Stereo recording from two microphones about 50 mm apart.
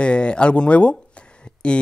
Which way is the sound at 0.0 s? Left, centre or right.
Left.